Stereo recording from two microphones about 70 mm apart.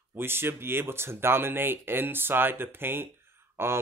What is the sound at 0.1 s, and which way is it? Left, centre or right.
Speech, right.